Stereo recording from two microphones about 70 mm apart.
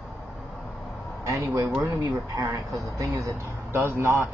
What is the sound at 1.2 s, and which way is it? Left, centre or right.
Speech, right.